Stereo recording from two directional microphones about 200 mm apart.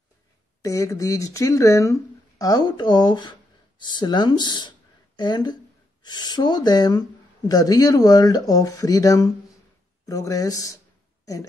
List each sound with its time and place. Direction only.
0.6 s speech: 15° left (ahead or behind)